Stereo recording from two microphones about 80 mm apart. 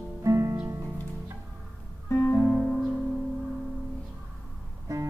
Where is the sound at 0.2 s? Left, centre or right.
Right.